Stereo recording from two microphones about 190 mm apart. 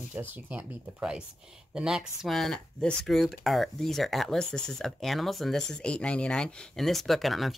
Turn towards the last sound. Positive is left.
turn(degrees=0)  # may be behind; listen again after turning